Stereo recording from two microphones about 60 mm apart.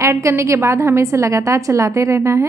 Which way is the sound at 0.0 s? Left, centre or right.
Right.